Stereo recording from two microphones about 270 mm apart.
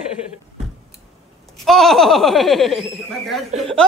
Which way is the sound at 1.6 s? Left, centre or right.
Centre.